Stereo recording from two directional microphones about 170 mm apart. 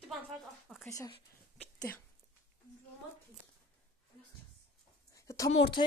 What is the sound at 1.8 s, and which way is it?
Speech, 10° left (ahead or behind).